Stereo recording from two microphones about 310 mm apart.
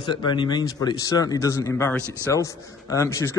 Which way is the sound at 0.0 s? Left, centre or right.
Centre.